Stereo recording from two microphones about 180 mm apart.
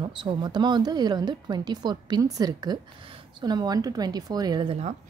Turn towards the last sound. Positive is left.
turn(degrees=-35)  # may be behind; listen again after turning